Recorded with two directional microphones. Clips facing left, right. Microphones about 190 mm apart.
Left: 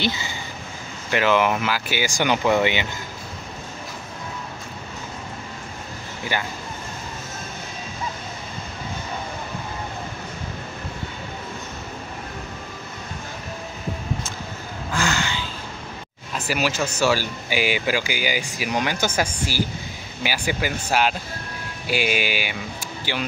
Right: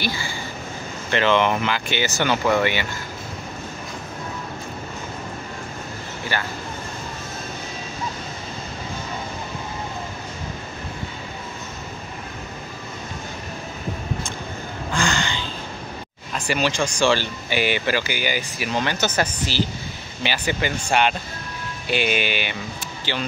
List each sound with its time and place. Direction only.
0.0 s speech: 20° left (ahead or behind)
1.1 s speech: 5° left (ahead or behind)
6.3 s speech: 15° left (ahead or behind)
14.9 s a sound: 5° left (ahead or behind)
16.3 s speech: 5° left (ahead or behind)